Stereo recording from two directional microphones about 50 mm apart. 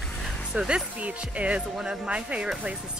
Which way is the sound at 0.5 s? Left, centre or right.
Centre.